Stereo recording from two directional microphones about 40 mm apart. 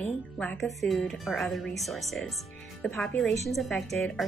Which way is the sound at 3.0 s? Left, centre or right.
Centre.